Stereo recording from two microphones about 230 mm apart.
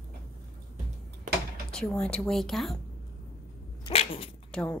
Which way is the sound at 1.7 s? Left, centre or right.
Centre.